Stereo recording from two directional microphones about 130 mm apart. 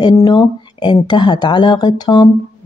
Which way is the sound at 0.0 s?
35° left (ahead or behind).